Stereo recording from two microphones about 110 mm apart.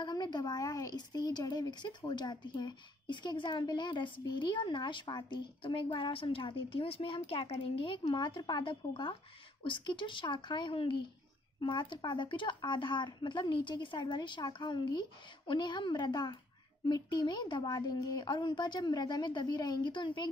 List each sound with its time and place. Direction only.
0.0 s a woman's voice: 40° left (ahead or behind)